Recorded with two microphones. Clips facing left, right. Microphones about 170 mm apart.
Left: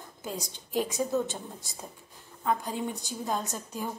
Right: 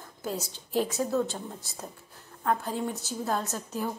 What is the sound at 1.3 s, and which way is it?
A woman's voice, 15° left (ahead or behind).